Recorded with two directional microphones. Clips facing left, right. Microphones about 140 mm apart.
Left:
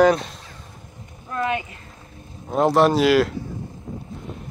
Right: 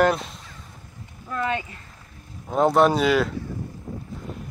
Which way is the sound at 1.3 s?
20° left (ahead or behind).